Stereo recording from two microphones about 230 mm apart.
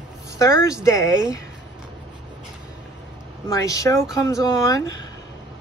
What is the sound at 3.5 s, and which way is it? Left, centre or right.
A woman's voice, centre.